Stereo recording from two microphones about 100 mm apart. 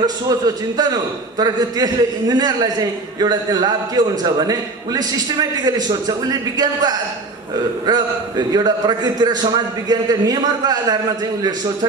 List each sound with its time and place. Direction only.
0.7 s a man's voice: 40° right (ahead or behind)